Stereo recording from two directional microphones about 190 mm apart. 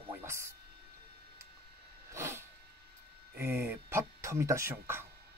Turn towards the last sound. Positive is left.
turn(degrees=-10)  # may be behind; listen again after turning